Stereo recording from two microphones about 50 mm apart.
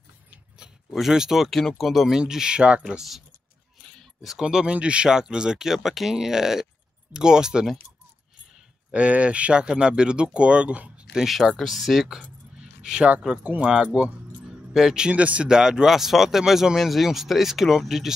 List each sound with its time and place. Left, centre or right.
0.6 s a sound: centre
0.9 s speech: centre
1.5 s speech: centre
3.8 s keys jangling: centre
4.4 s speech: centre
8.9 s speech: right
11.1 s speech: centre
12.5 s a sound: centre
13.4 s speech: right
14.7 s speech: centre
15.0 s speech: right
15.4 s speech: centre